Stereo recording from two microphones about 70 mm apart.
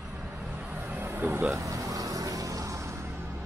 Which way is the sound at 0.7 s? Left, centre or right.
Right.